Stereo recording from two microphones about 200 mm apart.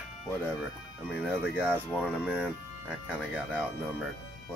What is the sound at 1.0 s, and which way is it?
A man's voice, 5° right (ahead or behind).